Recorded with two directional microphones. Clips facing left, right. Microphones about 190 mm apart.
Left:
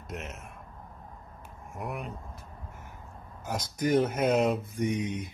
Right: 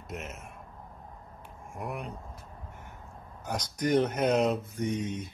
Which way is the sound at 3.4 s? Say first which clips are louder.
Left 1 dB; 5° left (ahead or behind).